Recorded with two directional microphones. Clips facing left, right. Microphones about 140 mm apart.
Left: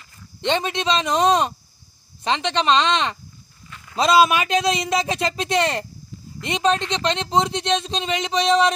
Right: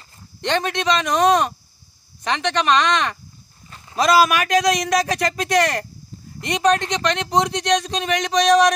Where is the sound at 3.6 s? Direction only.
35° right (ahead or behind).